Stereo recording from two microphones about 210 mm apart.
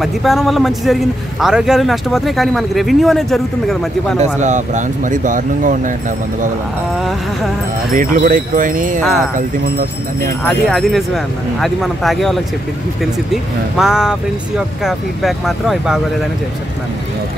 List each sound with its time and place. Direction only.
0.0 s speech: centre (ahead or behind)
4.2 s speech: 35° right (ahead or behind)
7.9 s speech: 40° right (ahead or behind)
10.7 s speech: centre (ahead or behind)